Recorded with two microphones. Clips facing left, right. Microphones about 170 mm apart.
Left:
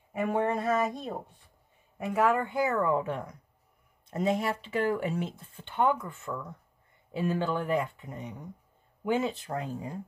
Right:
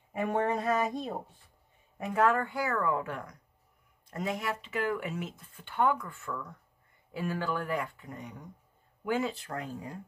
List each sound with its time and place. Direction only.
0.1 s speech: centre (ahead or behind)
2.4 s speech: 20° left (ahead or behind)